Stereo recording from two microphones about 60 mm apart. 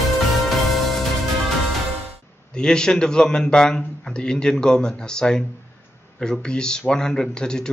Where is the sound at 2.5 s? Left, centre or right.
Centre.